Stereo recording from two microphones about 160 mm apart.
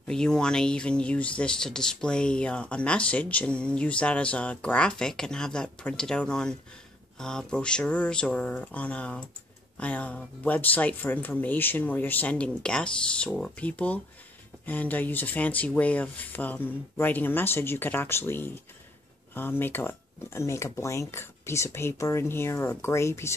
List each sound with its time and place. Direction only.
0.1 s speech: 5° left (ahead or behind)